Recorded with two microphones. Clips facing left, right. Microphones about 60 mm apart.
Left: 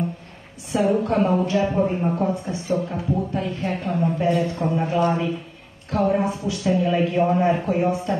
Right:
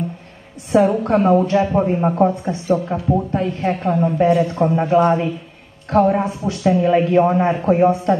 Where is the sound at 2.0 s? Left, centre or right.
Right.